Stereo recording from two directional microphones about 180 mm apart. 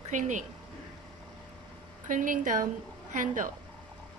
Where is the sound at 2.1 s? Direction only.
45° right (ahead or behind).